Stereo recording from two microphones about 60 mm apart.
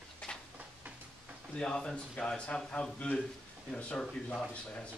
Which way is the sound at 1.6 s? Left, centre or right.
Centre.